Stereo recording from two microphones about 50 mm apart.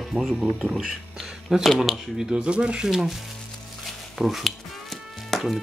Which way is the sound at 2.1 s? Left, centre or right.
Centre.